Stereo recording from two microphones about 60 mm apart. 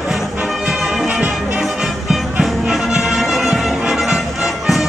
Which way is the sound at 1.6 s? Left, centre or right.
Centre.